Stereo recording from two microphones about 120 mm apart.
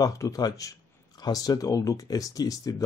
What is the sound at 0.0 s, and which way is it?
Speech, 30° left (ahead or behind).